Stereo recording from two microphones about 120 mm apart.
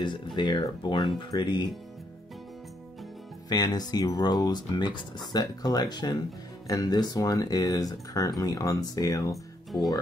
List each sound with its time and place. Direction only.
0.0 s speech: 40° left (ahead or behind)
3.4 s speech: 35° left (ahead or behind)